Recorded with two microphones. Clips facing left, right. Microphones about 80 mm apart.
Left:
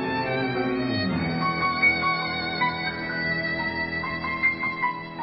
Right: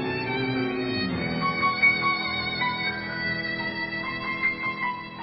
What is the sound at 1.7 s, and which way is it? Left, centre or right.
Music, left.